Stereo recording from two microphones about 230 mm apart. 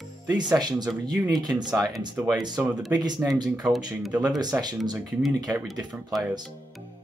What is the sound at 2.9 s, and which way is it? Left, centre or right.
Speech, centre.